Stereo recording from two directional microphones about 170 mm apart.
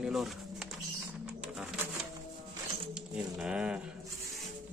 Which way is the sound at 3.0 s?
5° right (ahead or behind).